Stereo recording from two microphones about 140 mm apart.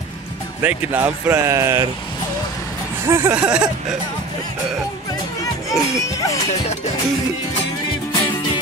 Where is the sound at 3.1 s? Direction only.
20° right (ahead or behind).